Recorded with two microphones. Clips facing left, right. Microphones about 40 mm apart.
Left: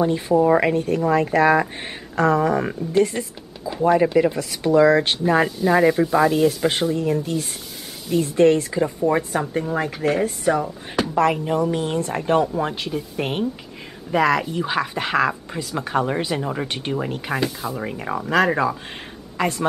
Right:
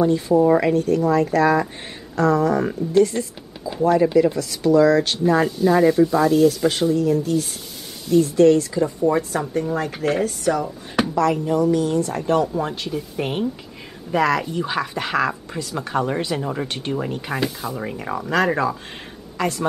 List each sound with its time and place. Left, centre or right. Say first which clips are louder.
0.4 s speech: even; left
5.6 s speech: right 1 dB; centre
9.8 s speech: even; centre
10.2 s speech: left 1 dB; left
11.4 s speech: right 3 dB; left
12.4 s speech: left 1 dB; centre
12.8 s speech: even; centre
16.9 s speech: even; centre
19.3 s speech: left 1 dB; centre